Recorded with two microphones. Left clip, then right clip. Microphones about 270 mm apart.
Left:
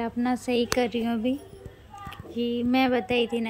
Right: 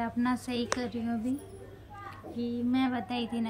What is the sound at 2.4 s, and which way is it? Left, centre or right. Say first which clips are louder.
Speech: left 7 dB; left.